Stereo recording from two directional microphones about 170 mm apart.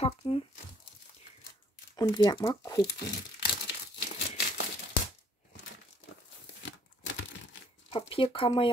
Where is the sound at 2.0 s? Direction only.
25° left (ahead or behind).